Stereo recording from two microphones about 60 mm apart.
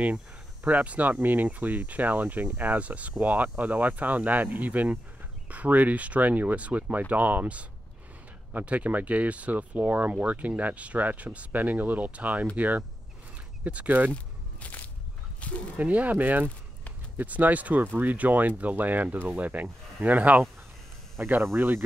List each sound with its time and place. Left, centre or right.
0.7 s speech: right
14.1 s a sound: left
15.8 s speech: right